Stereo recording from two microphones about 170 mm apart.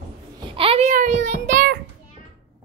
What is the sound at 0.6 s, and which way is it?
Child singing, 35° right (ahead or behind).